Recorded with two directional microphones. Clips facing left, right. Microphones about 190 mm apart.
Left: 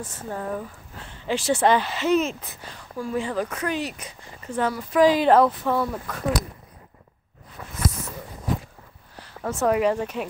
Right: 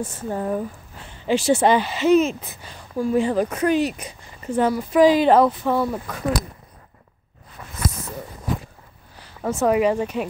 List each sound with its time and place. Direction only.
0.0 s speech: 20° right (ahead or behind)
1.2 s speech: 10° right (ahead or behind)
3.0 s speech: 25° right (ahead or behind)
3.7 s speech: 15° right (ahead or behind)
9.2 s speech: 5° right (ahead or behind)